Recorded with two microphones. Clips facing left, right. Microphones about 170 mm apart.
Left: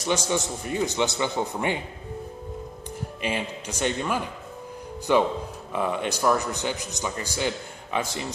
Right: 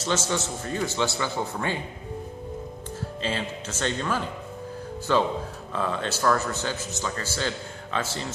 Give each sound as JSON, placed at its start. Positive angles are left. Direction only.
{"t": 0.0, "sound": "a man's voice", "side_deg": 15}
{"t": 3.2, "sound": "a man's voice", "side_deg": 15}